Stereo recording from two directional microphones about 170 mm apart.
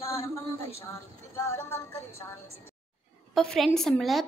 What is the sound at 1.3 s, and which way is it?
Music, 15° left (ahead or behind).